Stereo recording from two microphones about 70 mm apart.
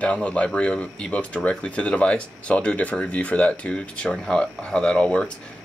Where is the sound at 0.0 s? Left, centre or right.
Centre.